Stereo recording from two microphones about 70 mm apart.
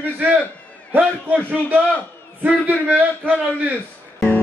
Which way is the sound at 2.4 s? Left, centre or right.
Right.